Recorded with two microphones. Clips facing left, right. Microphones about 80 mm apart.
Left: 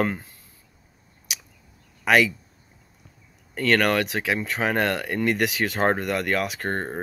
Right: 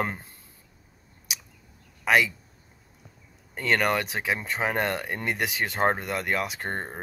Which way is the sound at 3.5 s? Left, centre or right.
Centre.